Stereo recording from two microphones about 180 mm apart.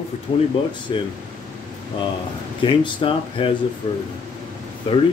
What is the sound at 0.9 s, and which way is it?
Speech, 25° left (ahead or behind).